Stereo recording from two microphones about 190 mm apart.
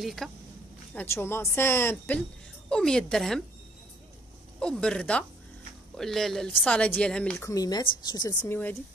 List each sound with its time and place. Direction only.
0.0 s speech: centre (ahead or behind)
0.9 s speech: 15° left (ahead or behind)
4.6 s speech: 5° left (ahead or behind)
7.4 s speech: 20° left (ahead or behind)